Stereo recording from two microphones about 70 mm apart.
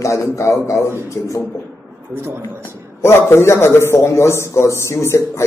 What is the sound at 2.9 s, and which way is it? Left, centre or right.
A man's voice, left.